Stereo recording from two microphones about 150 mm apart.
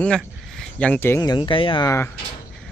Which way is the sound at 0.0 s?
5° left (ahead or behind).